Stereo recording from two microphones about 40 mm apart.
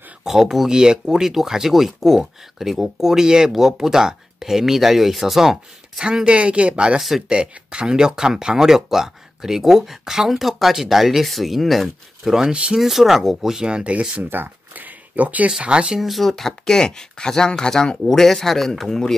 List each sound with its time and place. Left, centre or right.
0.2 s speech: centre
0.7 s speech: centre
6.0 s speech: right
7.0 s speech: centre
7.2 s speech: right; by 13.5 s centre
13.5 s speech: right
13.9 s speech: right
14.3 s speech: right
14.9 s a sound: right
15.6 s speech: right
16.0 s speech: centre
16.3 s speech: centre